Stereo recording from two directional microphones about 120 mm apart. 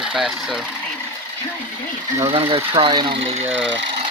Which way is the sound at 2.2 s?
50° right (ahead or behind).